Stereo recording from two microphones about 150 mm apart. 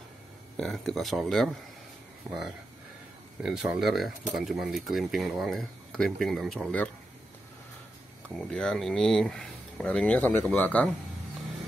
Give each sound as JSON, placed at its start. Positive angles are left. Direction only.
{"t": 0.6, "sound": "speech", "side_deg": 0}
{"t": 2.3, "sound": "speech", "side_deg": -20}
{"t": 3.4, "sound": "speech", "side_deg": -5}
{"t": 8.4, "sound": "speech", "side_deg": 5}